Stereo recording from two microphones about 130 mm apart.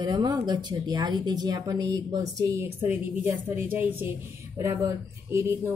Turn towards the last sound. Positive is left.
turn(degrees=-15)  # may be behind; listen again after turning